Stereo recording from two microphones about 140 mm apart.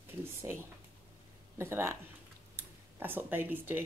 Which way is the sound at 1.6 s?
15° right (ahead or behind).